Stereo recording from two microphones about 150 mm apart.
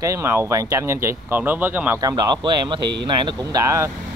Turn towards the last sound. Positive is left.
turn(degrees=-20)  # may be behind; listen again after turning